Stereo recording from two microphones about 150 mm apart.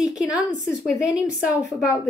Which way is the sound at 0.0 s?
5° right (ahead or behind).